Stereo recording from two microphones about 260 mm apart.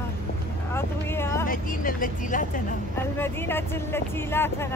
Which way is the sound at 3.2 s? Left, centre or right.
Centre.